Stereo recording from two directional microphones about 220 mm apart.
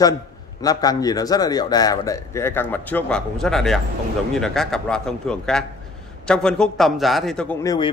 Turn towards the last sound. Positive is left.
turn(degrees=20)  # may be behind; listen again after turning